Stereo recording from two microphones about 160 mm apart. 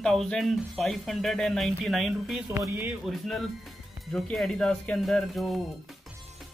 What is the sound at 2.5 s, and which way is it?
Speech, 15° right (ahead or behind).